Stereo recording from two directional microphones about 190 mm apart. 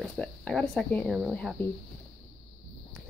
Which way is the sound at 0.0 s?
5° left (ahead or behind).